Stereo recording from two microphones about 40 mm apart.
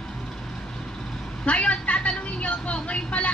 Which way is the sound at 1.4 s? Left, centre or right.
Left.